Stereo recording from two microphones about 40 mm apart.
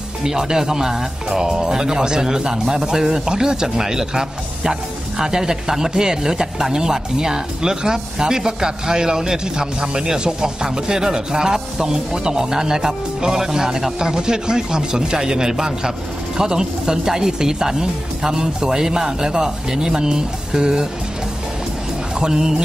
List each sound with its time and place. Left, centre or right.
0.2 s speech: centre
22.2 s speech: centre